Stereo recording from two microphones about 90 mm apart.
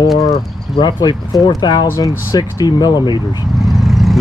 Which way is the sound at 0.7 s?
55° left (ahead or behind).